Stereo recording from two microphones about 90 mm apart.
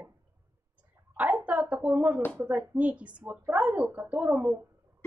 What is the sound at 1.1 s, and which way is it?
A woman's voice, 20° right (ahead or behind).